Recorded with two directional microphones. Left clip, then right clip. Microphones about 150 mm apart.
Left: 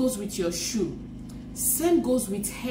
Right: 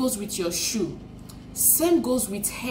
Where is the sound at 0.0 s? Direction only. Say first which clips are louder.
Even; 20° right (ahead or behind).